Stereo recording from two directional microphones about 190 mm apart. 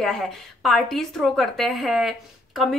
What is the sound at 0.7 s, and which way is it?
Speech, centre (ahead or behind).